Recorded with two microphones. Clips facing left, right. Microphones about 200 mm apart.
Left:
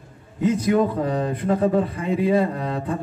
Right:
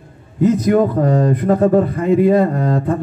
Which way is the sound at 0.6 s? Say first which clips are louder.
Right 6 dB; 50° right (ahead or behind).